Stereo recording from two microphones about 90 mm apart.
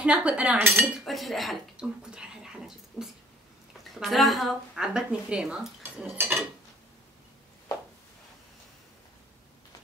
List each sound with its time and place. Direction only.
0.0 s cutlery: 15° right (ahead or behind)
1.0 s a woman's voice: centre (ahead or behind)
1.8 s a sound: 10° right (ahead or behind)
4.0 s a woman's voice: centre (ahead or behind)
6.1 s dishes: 25° right (ahead or behind)